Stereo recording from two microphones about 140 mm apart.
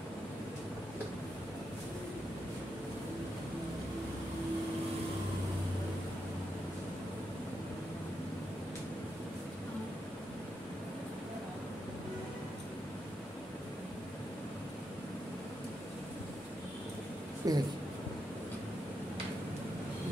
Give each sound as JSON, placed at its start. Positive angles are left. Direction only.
{"t": 17.4, "sound": "speech", "side_deg": -25}